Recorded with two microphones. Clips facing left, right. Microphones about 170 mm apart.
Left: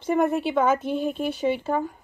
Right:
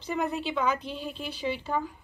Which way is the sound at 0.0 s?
55° left (ahead or behind).